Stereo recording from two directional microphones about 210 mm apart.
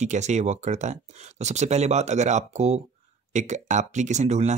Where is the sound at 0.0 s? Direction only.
35° right (ahead or behind).